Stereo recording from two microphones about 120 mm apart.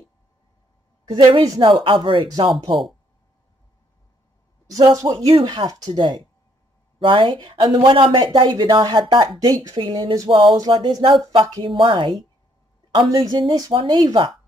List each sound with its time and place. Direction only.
1.0 s speech: 40° right (ahead or behind)
4.9 s speech: 35° right (ahead or behind)